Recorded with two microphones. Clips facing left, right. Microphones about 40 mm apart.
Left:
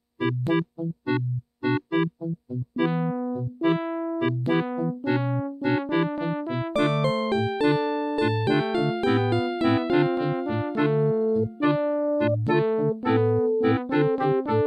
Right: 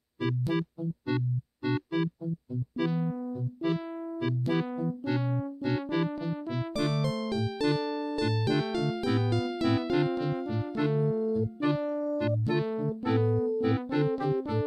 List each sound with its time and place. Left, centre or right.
0.2 s music: left
2.8 s keyboard: left
6.1 s music: left
11.6 s keyboard: left
13.9 s music: left